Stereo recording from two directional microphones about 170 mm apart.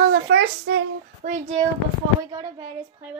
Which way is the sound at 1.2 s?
45° right (ahead or behind).